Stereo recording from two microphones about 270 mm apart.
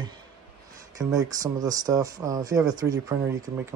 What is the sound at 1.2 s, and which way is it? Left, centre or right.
Speech, centre.